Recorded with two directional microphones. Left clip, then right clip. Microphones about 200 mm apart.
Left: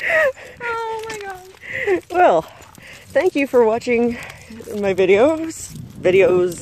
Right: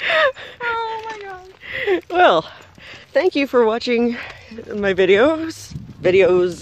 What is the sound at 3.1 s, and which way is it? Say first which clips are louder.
Speech: even; 10° right (ahead or behind).